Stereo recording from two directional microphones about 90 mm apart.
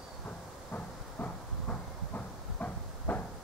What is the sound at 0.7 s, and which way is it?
Train, 15° left (ahead or behind).